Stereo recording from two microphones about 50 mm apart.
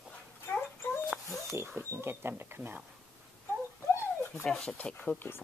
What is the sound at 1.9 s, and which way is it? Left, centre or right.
Speech, right.